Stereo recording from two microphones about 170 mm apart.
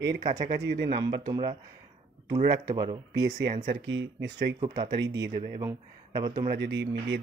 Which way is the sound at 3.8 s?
90° right.